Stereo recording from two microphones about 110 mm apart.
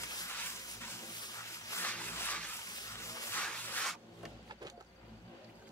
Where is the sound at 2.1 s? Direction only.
15° left (ahead or behind).